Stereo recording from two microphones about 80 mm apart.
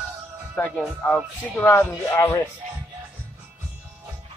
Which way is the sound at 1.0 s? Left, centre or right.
Centre.